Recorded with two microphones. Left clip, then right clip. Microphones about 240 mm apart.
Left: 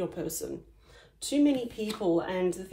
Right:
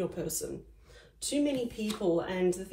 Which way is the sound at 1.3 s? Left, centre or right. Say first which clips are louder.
Left 4 dB; left.